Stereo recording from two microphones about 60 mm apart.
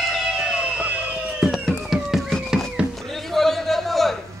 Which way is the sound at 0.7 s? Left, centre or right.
Centre.